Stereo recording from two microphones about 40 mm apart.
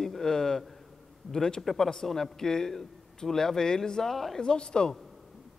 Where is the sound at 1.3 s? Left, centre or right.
Centre.